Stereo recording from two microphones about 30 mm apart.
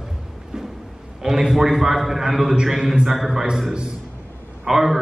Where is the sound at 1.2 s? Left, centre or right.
Centre.